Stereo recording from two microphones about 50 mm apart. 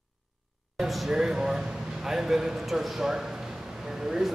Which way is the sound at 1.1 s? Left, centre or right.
Centre.